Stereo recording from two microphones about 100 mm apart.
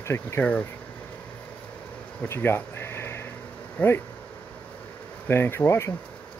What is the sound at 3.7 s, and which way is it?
Speech, 20° left (ahead or behind).